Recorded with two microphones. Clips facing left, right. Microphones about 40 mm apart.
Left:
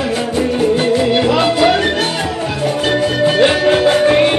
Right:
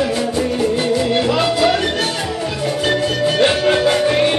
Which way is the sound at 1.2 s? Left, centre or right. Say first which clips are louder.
Left 3 dB; centre.